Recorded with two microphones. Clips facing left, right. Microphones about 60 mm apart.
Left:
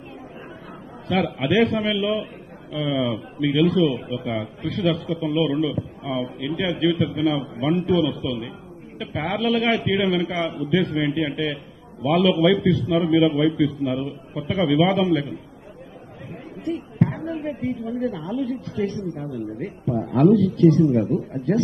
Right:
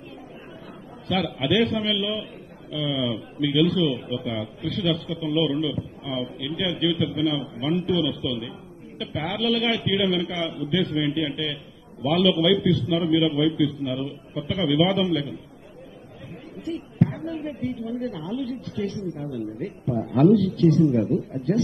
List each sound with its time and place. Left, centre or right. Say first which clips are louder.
1.0 s a man's voice: left 2 dB; left
16.6 s a woman's voice: left 2 dB; left
20.3 s a man's voice: left 3 dB; left